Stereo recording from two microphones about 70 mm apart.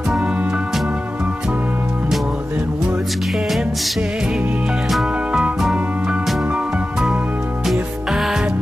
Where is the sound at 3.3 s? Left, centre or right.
Centre.